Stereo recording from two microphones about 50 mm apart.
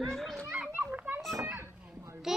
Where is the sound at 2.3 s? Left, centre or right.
Centre.